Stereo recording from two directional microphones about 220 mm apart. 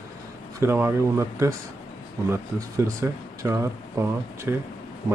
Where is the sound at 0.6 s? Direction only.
10° right (ahead or behind).